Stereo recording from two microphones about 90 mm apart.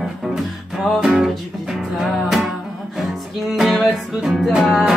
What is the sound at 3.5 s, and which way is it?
Music, centre (ahead or behind).